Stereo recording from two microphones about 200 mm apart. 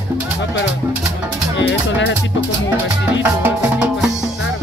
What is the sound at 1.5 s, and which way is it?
Music, 60° left (ahead or behind).